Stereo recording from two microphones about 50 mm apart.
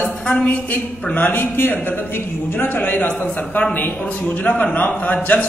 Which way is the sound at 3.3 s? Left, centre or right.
Left.